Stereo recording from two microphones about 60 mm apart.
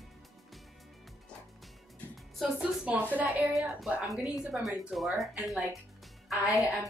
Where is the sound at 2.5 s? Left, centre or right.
Right.